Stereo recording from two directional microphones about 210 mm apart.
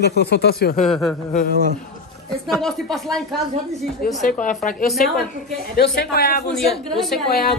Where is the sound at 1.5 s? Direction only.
45° right (ahead or behind).